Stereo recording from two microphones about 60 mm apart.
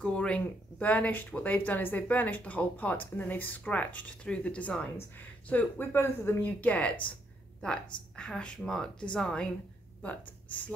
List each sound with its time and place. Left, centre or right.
0.0 s speech: centre
7.6 s speech: centre
10.0 s speech: left